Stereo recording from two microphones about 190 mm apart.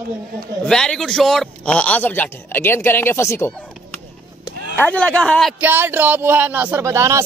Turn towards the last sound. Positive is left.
turn(degrees=-15)  # may be behind; listen again after turning